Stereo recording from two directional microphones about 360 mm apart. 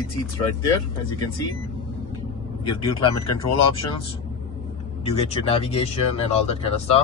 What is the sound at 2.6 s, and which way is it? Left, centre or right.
Speech, centre.